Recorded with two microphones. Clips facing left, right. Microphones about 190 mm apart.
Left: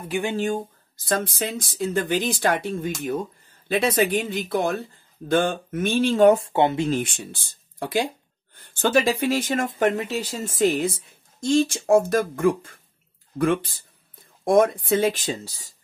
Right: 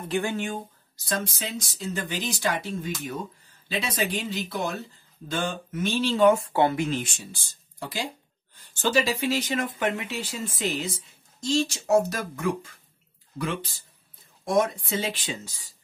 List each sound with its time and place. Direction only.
0.1 s speech: 20° left (ahead or behind)
0.4 s a woman's voice: 45° left (ahead or behind)
6.4 s speech: 25° left (ahead or behind)
6.9 s a woman's voice: 55° left (ahead or behind); by 15.7 s 40° left (ahead or behind)